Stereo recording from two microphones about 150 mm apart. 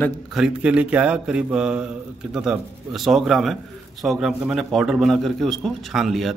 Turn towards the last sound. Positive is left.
turn(degrees=0)  # may be behind; listen again after turning